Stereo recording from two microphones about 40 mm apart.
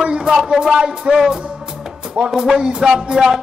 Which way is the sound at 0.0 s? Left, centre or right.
Centre.